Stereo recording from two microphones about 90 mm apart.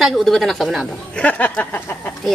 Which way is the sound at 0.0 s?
Centre (ahead or behind).